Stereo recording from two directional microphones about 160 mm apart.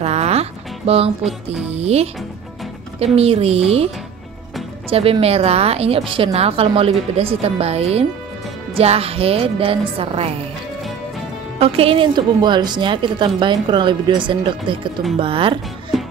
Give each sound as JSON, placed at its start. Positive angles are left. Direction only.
{"t": 0.0, "sound": "music", "side_deg": -40}
{"t": 1.7, "sound": "a woman's voice", "side_deg": -40}
{"t": 11.6, "sound": "a woman's voice", "side_deg": -35}
{"t": 15.9, "sound": "music", "side_deg": 0}